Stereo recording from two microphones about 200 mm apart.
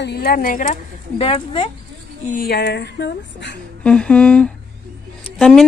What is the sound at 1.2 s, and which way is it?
Speech, 25° left (ahead or behind).